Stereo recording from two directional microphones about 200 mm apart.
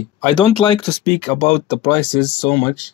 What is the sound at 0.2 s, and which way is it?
Speech, 25° left (ahead or behind).